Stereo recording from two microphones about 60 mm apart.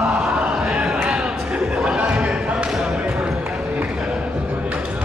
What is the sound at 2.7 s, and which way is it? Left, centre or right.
Basketball bounce, centre.